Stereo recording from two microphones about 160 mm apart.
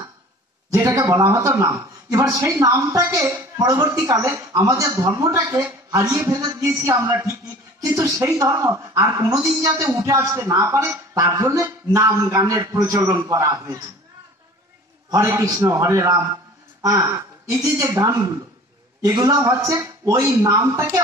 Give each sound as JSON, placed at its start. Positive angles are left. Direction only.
{"t": 0.7, "sound": "speech", "side_deg": -20}
{"t": 15.0, "sound": "speech", "side_deg": -20}